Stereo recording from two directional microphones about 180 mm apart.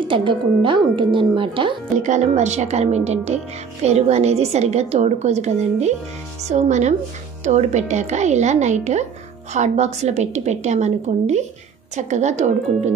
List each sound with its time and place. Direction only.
0.1 s speech: 30° right (ahead or behind)
2.0 s a woman's voice: 40° right (ahead or behind)